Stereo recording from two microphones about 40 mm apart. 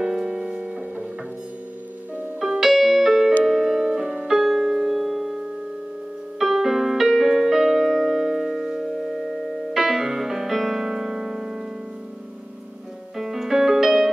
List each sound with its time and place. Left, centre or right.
0.0 s music: centre
0.4 s music: right
2.6 s music: centre
3.4 s piano: centre
4.3 s music: centre
6.4 s music: centre
13.2 s music: centre